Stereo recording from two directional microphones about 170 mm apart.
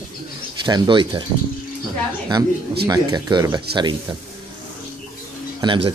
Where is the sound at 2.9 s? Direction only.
20° right (ahead or behind).